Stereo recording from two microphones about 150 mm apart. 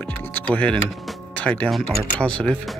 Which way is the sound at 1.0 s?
10° left (ahead or behind).